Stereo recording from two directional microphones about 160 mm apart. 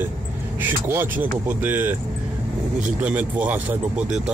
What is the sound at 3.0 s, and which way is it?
Speech, 10° right (ahead or behind).